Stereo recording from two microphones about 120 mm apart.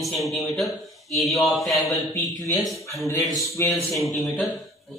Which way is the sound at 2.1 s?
30° left (ahead or behind).